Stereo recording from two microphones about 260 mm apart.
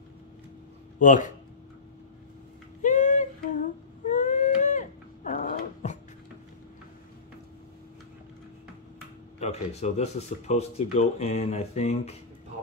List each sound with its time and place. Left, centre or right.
0.9 s speech: left
2.8 s humming: left
9.4 s speech: left